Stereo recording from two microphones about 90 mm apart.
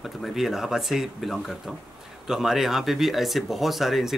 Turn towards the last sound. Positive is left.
turn(degrees=-5)  # may be behind; listen again after turning